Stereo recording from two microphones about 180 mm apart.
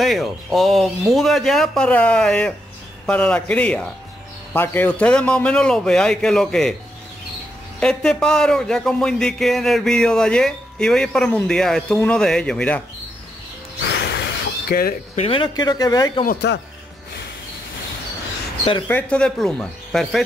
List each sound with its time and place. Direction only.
0.0 s a man's voice: centre (ahead or behind)
7.8 s speech: 5° left (ahead or behind)
13.8 s music: 70° left (ahead or behind)
14.7 s speech: 55° left (ahead or behind)
15.1 s speech: 30° left (ahead or behind)
16.3 s speech: 70° left (ahead or behind)
18.9 s speech: 10° left (ahead or behind)